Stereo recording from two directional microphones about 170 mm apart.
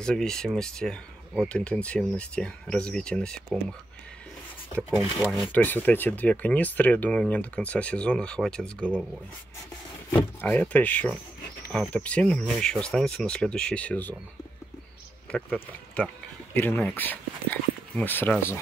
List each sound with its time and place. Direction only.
0.0 s speech: 5° left (ahead or behind)
4.7 s speech: centre (ahead or behind)
10.1 s speech: 10° left (ahead or behind)
15.3 s speech: 5° left (ahead or behind)